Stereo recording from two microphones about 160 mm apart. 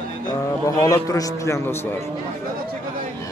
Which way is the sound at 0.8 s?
20° left (ahead or behind).